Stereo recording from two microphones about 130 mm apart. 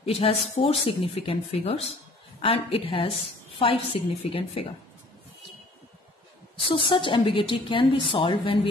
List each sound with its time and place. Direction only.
0.0 s speech: 50° left (ahead or behind)
6.6 s a woman's voice: 40° left (ahead or behind)